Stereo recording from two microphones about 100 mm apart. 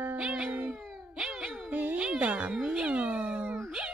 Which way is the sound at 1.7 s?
15° right (ahead or behind).